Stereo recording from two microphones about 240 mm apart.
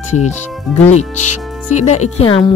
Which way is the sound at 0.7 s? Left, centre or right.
Left.